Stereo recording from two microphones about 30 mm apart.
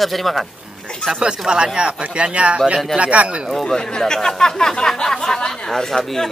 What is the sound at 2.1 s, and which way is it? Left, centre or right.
Speech, right.